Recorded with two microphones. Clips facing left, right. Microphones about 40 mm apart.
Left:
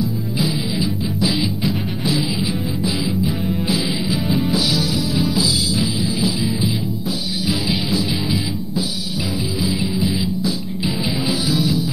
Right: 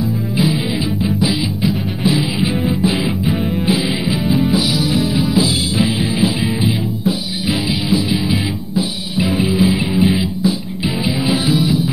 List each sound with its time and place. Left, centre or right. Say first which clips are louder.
0.0 s music: right 4 dB; right
1.3 s music: right 2 dB; centre
2.0 s music: right 5 dB; centre
2.8 s music: right 4 dB; right
3.3 s music: right 3 dB; centre
3.6 s music: right 4 dB; right
4.2 s music: right 5 dB; centre
4.5 s music: right 3 dB; centre
4.9 s music: right 4 dB; right
9.2 s music: right 9 dB; right
10.2 s music: right 4 dB; centre